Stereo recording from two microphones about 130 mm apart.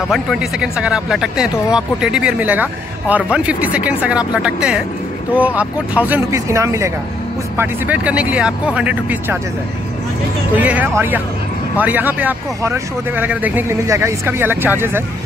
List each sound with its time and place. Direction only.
0.1 s speech: 5° right (ahead or behind)
6.3 s speech: 25° right (ahead or behind)
10.5 s speech: 10° right (ahead or behind)